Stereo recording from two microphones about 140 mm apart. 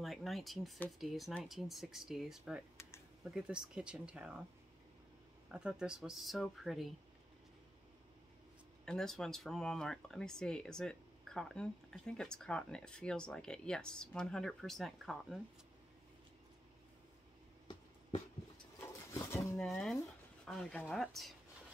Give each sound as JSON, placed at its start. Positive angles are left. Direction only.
{"t": 0.0, "sound": "speech", "side_deg": 0}
{"t": 5.5, "sound": "speech", "side_deg": -5}
{"t": 8.8, "sound": "speech", "side_deg": 5}
{"t": 19.3, "sound": "speech", "side_deg": 20}
{"t": 19.6, "sound": "speech", "side_deg": 5}